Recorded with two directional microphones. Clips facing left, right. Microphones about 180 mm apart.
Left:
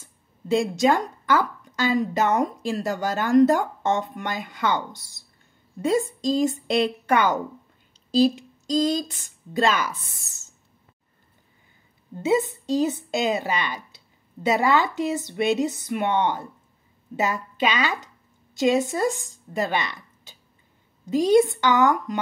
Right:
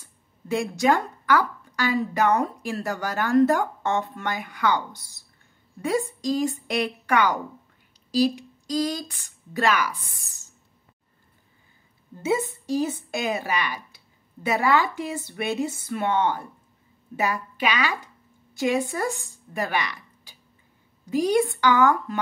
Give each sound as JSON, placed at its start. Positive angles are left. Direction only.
{"t": 0.0, "sound": "speech", "side_deg": 20}
{"t": 12.2, "sound": "a woman's voice", "side_deg": 20}